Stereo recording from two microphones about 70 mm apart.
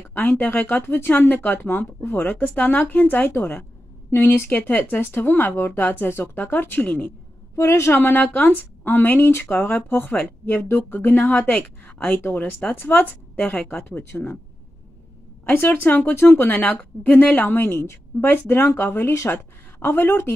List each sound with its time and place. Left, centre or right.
0.1 s speech: left
7.5 s speech: left
15.4 s speech: left